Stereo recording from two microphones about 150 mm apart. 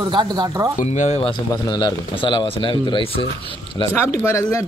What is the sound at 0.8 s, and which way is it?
Speech, 50° left (ahead or behind).